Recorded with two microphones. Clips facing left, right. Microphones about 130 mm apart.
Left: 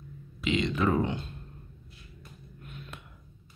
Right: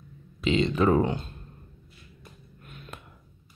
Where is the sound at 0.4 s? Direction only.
35° right (ahead or behind).